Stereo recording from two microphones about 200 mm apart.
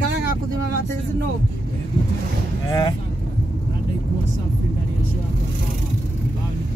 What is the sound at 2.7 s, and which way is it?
Vehicle, 20° left (ahead or behind).